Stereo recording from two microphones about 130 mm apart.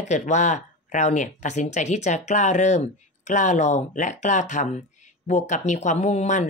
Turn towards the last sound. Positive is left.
turn(degrees=65)  # may be behind; listen again after turning